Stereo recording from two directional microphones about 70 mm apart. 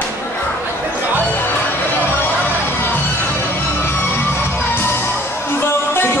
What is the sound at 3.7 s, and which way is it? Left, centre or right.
Music, left.